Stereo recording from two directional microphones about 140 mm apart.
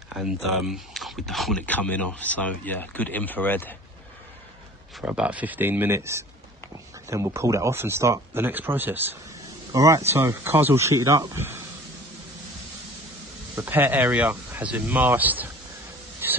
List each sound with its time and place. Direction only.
0.1 s speech: 5° right (ahead or behind); by 3.7 s 15° left (ahead or behind)
5.0 s speech: 10° right (ahead or behind)
9.7 s speech: 25° right (ahead or behind)
13.6 s speech: 15° right (ahead or behind)
16.2 s a sound: 15° right (ahead or behind)